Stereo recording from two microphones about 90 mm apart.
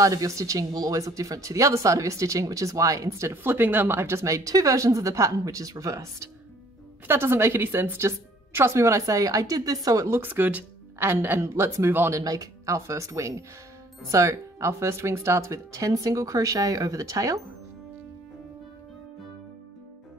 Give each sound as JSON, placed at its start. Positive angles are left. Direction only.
{"t": 0.0, "sound": "a woman's voice", "side_deg": -40}
{"t": 12.2, "sound": "speech", "side_deg": -40}